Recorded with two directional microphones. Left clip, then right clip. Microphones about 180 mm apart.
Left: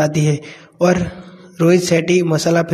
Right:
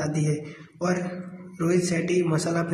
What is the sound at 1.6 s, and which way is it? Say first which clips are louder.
A man's voice: left 11 dB; 35° left (ahead or behind).